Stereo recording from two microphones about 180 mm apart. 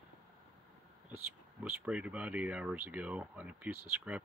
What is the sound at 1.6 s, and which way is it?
Speech, 5° right (ahead or behind).